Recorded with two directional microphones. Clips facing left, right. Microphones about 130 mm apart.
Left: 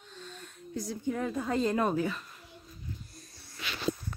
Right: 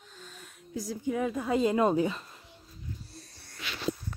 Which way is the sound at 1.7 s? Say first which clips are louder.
Right 3 dB; 20° right (ahead or behind).